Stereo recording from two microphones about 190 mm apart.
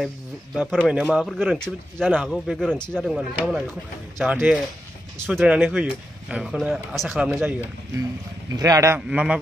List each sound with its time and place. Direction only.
0.6 s speech: 5° right (ahead or behind)
8.5 s a man's voice: 15° right (ahead or behind)